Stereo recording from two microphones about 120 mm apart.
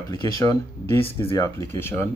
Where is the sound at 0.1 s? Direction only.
25° left (ahead or behind).